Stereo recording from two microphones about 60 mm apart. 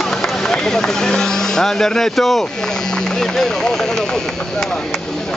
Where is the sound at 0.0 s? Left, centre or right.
Centre.